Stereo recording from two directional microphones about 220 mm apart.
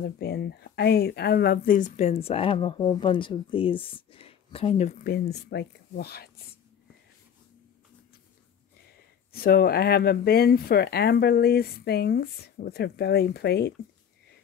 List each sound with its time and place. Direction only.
0.2 s speech: 50° left (ahead or behind); by 4.9 s 30° left (ahead or behind)
5.0 s speech: 45° left (ahead or behind)
9.3 s speech: 45° left (ahead or behind)